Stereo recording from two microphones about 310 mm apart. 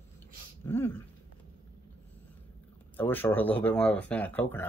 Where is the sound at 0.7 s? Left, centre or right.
Centre.